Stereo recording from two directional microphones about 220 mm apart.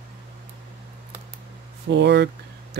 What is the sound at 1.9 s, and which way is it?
Speech, 50° right (ahead or behind).